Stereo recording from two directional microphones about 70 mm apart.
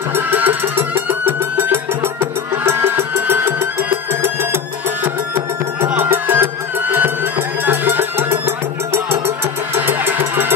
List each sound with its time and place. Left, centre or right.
0.1 s music: right